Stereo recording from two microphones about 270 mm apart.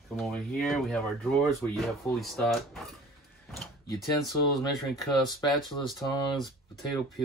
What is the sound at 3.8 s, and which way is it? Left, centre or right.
Speech, centre.